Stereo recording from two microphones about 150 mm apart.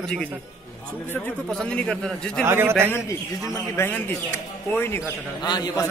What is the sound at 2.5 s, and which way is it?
Speech, 15° right (ahead or behind).